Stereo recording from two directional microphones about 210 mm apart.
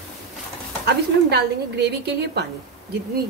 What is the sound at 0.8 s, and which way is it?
A woman's voice, 50° right (ahead or behind).